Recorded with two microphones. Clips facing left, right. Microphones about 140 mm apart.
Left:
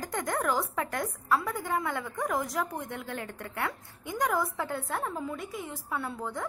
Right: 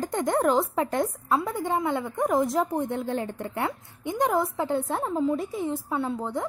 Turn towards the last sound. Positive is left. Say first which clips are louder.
# right 6 dB
turn(degrees=-20)  # may be behind; listen again after turning